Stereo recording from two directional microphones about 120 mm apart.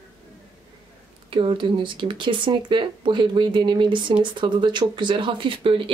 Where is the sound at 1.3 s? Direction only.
45° right (ahead or behind).